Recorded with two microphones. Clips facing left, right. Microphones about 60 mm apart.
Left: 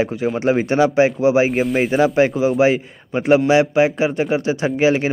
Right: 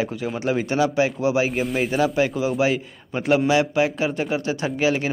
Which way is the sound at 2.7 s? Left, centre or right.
Centre.